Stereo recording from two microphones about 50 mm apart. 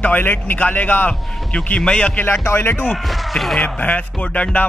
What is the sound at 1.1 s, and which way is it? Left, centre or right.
Speech, left.